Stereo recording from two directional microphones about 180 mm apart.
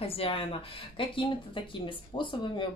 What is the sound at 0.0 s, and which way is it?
Speech, 30° left (ahead or behind).